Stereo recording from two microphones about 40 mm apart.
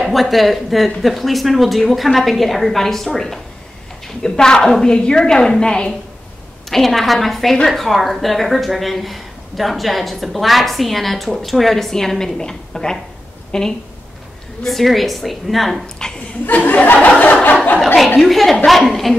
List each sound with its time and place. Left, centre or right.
0.0 s a woman's voice: centre
6.7 s a woman's voice: centre
14.6 s a woman's voice: centre
16.0 s speech: centre
16.4 s chuckle: left
18.2 s a woman's voice: centre